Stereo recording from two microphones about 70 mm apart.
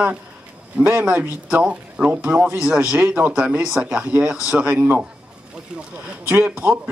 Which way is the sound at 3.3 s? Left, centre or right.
Centre.